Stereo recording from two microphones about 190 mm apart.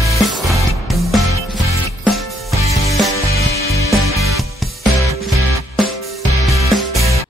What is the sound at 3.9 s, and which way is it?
Music, centre (ahead or behind).